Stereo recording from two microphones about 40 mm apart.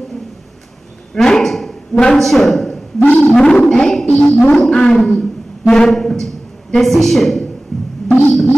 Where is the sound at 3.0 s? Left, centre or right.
Left.